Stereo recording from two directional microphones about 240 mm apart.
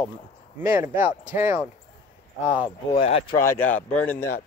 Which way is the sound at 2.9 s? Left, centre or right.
Left.